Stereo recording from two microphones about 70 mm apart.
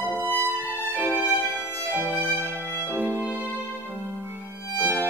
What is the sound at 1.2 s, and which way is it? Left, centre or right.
Violin, left.